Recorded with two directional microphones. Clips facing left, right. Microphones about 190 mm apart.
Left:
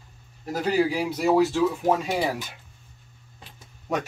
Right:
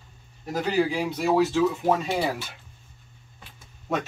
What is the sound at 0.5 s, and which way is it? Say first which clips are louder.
Speech: left 1 dB; 10° left (ahead or behind).